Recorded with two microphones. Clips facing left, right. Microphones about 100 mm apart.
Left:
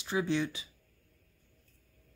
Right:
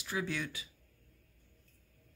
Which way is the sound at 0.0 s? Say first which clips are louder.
Left 6 dB; 25° left (ahead or behind).